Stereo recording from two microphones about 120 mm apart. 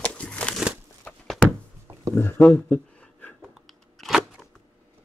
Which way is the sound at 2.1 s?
20° left (ahead or behind).